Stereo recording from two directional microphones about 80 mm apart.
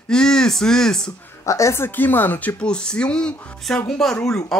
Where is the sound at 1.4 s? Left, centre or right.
Left.